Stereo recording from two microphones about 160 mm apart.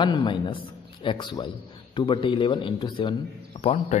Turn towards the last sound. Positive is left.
turn(degrees=40)  # may be behind; listen again after turning